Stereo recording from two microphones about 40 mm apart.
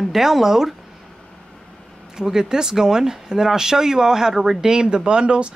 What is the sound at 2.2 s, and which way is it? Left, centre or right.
Speech, centre.